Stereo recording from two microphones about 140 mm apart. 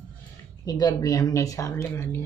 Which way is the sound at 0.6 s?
25° left (ahead or behind).